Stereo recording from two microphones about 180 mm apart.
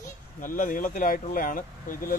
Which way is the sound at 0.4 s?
50° left (ahead or behind).